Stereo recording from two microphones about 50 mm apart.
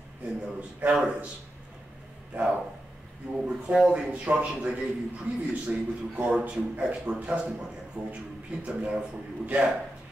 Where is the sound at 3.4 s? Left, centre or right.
Right.